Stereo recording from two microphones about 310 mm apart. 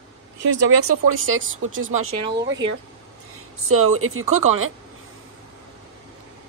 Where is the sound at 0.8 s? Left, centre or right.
Right.